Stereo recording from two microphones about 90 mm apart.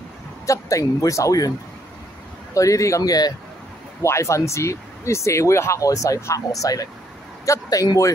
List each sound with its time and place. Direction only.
0.5 s speech: 35° left (ahead or behind)
2.5 s speech: 35° left (ahead or behind)
4.0 s speech: 30° left (ahead or behind)